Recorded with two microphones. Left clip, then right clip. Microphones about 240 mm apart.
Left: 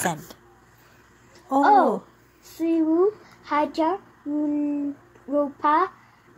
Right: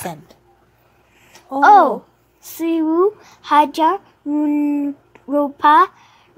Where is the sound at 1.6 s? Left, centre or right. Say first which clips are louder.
Right 7 dB; right.